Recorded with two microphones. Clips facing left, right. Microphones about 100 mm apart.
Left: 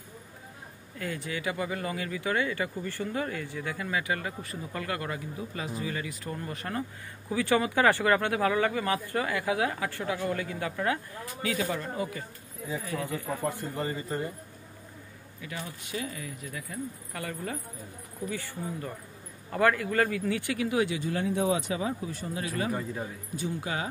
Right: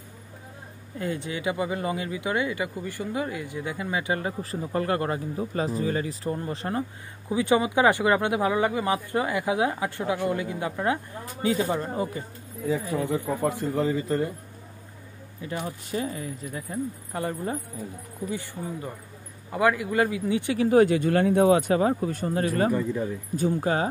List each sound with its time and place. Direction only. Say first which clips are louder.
0.9 s speech: right 4 dB; 25° right (ahead or behind)
13.4 s a man's voice: right 7 dB; 90° right
15.6 s speech: right 6 dB; 35° right (ahead or behind); by 20.5 s 20° right (ahead or behind)
20.5 s speech: right 12 dB; 40° right (ahead or behind)